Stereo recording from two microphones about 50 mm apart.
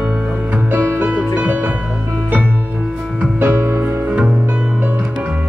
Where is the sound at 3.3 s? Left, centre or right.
Right.